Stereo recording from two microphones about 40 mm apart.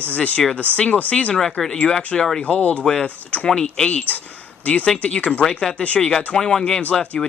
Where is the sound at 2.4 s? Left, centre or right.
Left.